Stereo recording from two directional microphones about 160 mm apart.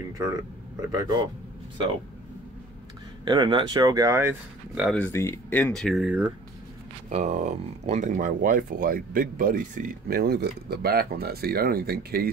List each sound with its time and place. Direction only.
0.7 s speech: 25° right (ahead or behind)
3.3 s speech: 30° right (ahead or behind)
4.9 s speech: 15° left (ahead or behind)
6.0 s speech: 10° right (ahead or behind)
7.1 s speech: 45° right (ahead or behind); by 12.3 s 75° right (ahead or behind)